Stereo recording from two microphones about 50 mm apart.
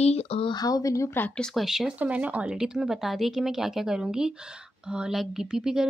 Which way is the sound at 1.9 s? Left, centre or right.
Right.